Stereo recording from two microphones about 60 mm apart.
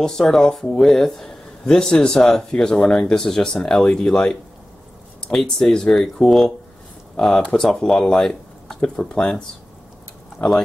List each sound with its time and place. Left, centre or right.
0.0 s speech: centre